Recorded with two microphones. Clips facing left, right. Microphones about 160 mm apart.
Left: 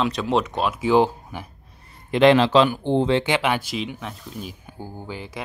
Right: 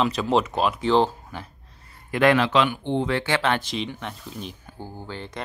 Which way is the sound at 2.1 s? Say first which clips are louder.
Left 4 dB; 25° left (ahead or behind).